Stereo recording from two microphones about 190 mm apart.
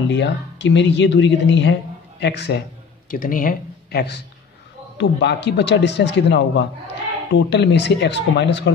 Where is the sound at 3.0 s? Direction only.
45° left (ahead or behind); by 8.7 s 65° left (ahead or behind).